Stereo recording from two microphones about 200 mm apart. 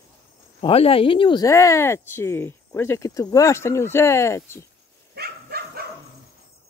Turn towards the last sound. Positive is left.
turn(degrees=-50)  # may be behind; listen again after turning